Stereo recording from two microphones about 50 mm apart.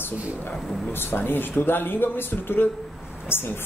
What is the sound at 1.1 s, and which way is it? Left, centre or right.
A man's voice, left.